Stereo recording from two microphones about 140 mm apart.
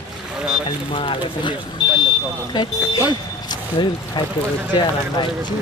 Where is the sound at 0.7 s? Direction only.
35° left (ahead or behind).